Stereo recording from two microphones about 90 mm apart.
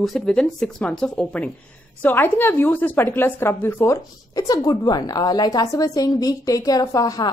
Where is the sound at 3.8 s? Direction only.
40° left (ahead or behind).